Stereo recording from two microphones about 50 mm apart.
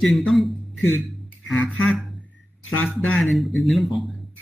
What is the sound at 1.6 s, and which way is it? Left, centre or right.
Speech, left.